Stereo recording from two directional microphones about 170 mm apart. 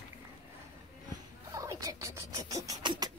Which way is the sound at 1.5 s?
20° right (ahead or behind).